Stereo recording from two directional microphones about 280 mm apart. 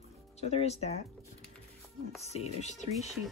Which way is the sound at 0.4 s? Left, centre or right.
Left.